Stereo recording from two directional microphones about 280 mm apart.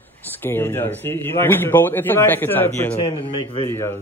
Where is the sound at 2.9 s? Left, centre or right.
Centre.